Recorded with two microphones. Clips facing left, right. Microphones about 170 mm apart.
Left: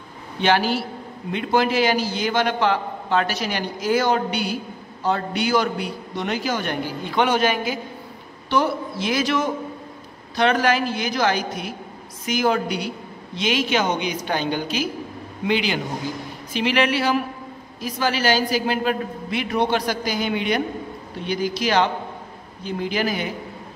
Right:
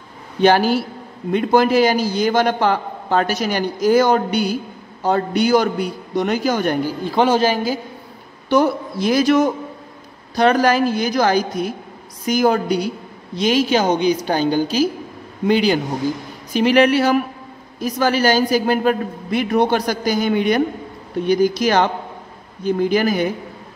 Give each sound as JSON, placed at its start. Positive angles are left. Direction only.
{"t": 0.4, "sound": "a man's voice", "side_deg": -45}